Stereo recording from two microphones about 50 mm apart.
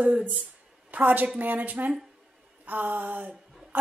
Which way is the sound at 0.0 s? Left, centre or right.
Right.